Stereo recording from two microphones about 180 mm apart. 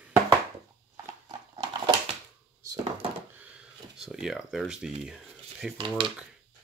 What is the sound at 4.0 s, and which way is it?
Speech, centre (ahead or behind).